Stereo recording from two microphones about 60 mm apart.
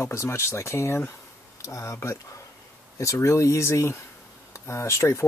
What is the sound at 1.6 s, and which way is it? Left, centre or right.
Speech, left.